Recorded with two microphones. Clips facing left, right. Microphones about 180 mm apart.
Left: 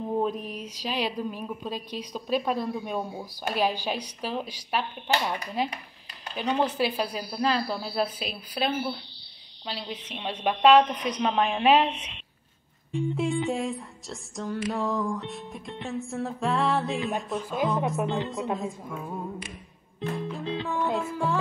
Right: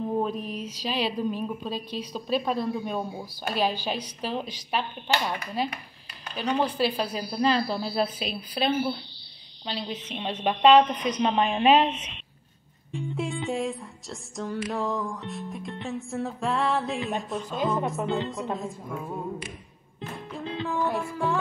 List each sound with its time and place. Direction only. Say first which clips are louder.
0.2 s a woman's voice: even; 15° left (ahead or behind)
7.1 s music: right 2 dB; centre (ahead or behind)
12.9 s music: left 4 dB; centre (ahead or behind)
17.8 s a woman's voice: even; 20° left (ahead or behind)
18.5 s music: left 1 dB; centre (ahead or behind)
20.3 s music: even; centre (ahead or behind)